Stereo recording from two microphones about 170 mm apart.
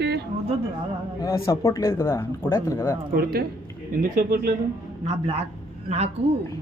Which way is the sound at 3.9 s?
55° right (ahead or behind).